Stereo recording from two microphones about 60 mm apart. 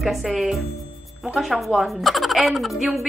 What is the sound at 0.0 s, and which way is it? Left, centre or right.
A woman's voice, centre.